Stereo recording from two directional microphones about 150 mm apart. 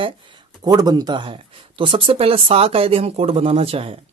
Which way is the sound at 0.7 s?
25° right (ahead or behind).